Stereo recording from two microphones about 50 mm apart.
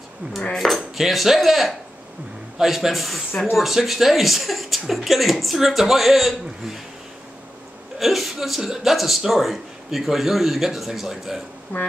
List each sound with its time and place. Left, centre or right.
0.6 s speech: centre
8.0 s speech: centre
11.7 s speech: left